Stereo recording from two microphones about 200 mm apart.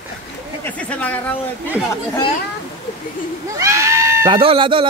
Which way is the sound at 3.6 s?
15° right (ahead or behind).